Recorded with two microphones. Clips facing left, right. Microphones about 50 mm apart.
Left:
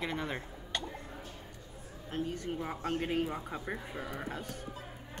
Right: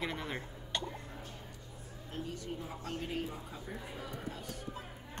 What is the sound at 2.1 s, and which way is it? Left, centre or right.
A woman's voice, left.